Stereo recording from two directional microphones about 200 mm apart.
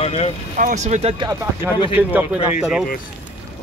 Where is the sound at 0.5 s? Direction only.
40° right (ahead or behind).